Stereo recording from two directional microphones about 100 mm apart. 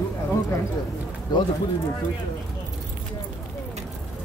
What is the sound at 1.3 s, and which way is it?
Speech, 45° left (ahead or behind).